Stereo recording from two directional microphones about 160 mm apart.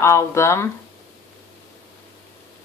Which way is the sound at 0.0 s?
15° left (ahead or behind).